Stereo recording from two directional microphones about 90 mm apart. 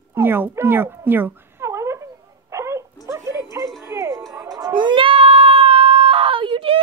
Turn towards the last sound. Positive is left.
turn(degrees=-75)  # may be behind; listen again after turning